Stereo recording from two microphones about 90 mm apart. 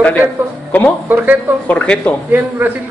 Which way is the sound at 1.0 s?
20° right (ahead or behind).